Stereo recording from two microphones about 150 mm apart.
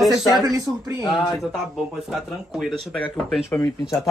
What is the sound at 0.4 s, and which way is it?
Speech, 20° right (ahead or behind).